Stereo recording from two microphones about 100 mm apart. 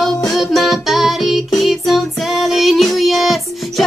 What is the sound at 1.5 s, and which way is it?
Child singing, centre (ahead or behind).